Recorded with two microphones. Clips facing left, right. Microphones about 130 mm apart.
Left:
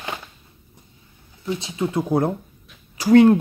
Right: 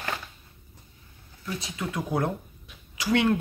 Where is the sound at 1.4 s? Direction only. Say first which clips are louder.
Left 8 dB; 25° left (ahead or behind).